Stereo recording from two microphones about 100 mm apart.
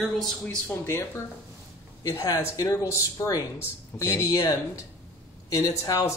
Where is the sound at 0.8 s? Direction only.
25° left (ahead or behind).